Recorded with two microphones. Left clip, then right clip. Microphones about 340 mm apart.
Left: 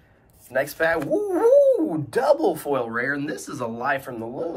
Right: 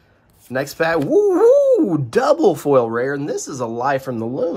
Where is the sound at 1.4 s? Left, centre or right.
Centre.